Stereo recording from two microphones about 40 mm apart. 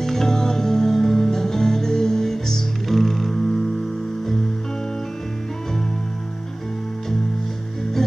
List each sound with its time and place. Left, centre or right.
0.0 s music: centre